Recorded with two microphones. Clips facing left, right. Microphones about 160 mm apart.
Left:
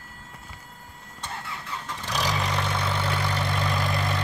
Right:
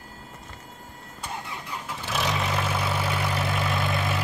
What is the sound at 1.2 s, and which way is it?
Vehicle, 15° right (ahead or behind).